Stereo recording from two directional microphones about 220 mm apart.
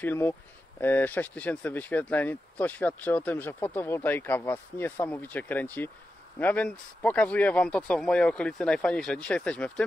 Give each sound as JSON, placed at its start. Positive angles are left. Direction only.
{"t": 0.0, "sound": "speech", "side_deg": 10}